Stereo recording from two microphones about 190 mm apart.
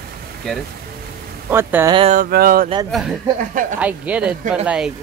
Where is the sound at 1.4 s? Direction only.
15° right (ahead or behind).